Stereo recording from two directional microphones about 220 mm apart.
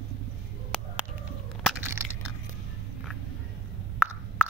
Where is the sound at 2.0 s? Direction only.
10° right (ahead or behind).